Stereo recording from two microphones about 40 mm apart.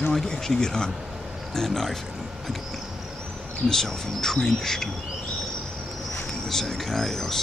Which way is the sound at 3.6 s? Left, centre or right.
Centre.